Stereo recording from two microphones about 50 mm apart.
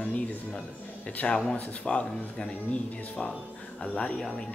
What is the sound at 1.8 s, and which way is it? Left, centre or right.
Speech, left.